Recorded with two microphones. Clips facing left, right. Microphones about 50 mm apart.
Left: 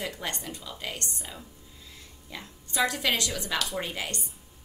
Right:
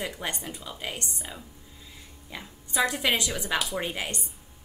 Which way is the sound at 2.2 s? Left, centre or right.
Centre.